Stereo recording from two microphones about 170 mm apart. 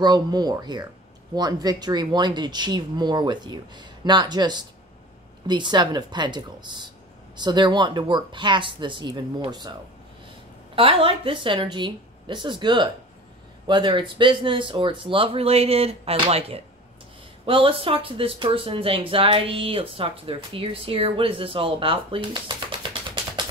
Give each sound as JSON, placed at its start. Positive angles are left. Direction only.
{"t": 0.0, "sound": "speech", "side_deg": -25}